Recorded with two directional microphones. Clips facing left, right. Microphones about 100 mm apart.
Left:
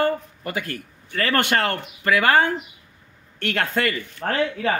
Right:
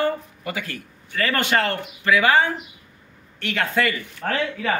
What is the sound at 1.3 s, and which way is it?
Speech, 60° left (ahead or behind).